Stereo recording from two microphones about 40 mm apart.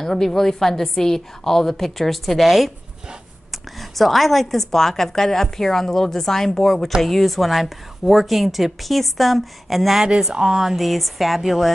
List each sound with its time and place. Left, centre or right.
0.0 s a woman's voice: centre
3.9 s a woman's voice: centre
10.3 s speech: centre
10.6 s a woman's voice: centre